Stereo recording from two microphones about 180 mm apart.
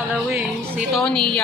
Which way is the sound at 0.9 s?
5° left (ahead or behind).